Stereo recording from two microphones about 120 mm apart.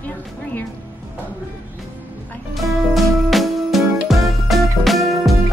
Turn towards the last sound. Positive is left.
turn(degrees=0)  # may be behind; listen again after turning